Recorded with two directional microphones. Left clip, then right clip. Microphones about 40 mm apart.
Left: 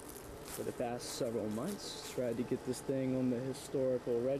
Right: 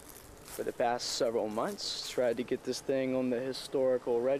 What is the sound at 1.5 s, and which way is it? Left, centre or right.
Speech, centre.